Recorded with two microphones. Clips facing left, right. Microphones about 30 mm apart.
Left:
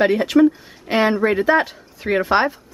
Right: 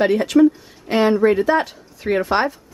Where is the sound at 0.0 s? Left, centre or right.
Centre.